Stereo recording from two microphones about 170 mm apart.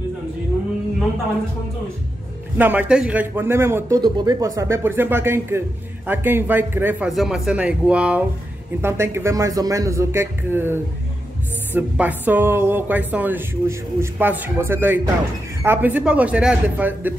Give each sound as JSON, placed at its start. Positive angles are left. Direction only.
{"t": 2.5, "sound": "speech", "side_deg": -10}